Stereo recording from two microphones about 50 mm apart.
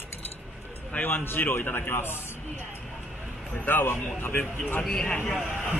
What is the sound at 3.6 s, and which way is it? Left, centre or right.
A man's voice, left.